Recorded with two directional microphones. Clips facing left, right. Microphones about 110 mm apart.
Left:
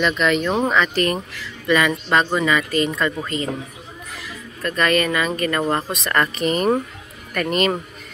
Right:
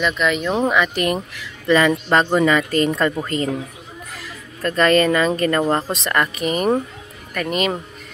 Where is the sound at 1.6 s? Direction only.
30° right (ahead or behind).